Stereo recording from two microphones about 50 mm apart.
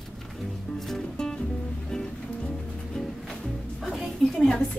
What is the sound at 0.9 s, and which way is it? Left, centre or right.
Music, centre.